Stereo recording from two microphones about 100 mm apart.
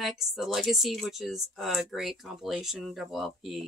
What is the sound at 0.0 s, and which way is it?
Speech, centre (ahead or behind).